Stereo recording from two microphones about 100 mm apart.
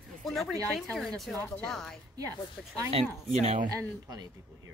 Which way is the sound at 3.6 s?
45° right (ahead or behind).